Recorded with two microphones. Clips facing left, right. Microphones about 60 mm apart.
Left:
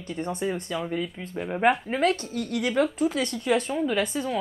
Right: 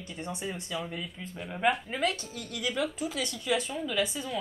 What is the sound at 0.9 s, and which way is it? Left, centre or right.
Speech, left.